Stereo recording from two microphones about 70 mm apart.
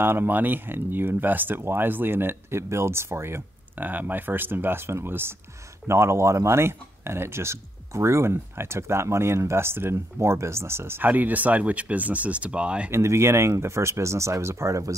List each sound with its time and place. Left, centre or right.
0.0 s speech: right
11.1 s speech: right
12.9 s speech: right